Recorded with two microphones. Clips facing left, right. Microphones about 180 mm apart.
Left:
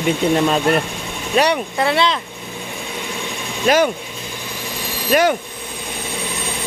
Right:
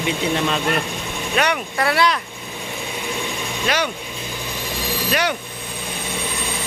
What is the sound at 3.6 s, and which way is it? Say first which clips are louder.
Speech: left 8 dB; 45° left (ahead or behind).